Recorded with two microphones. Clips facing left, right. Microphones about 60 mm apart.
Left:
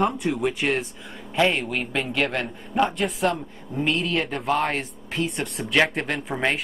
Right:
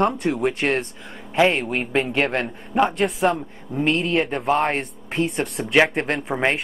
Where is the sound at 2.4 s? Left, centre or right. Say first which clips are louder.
Right 3 dB; centre.